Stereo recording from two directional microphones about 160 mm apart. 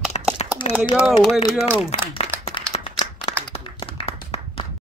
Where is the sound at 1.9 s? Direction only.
40° left (ahead or behind).